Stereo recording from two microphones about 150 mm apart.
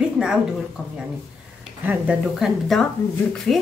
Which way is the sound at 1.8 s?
10° right (ahead or behind).